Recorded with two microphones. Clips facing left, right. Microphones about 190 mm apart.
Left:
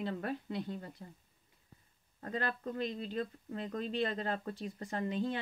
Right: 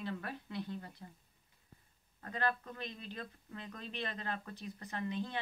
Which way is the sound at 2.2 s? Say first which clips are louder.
Even; 35° left (ahead or behind).